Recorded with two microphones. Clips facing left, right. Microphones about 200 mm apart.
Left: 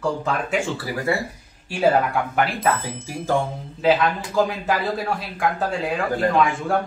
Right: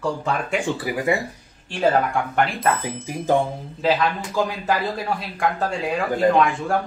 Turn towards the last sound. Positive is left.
turn(degrees=0)  # may be behind; listen again after turning